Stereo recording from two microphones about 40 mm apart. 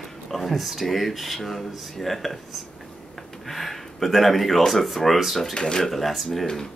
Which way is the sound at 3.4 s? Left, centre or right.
Centre.